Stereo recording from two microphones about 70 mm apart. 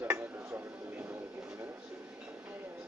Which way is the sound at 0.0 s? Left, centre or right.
Right.